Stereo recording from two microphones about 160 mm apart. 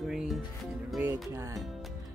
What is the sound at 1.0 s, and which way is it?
Music, 15° right (ahead or behind).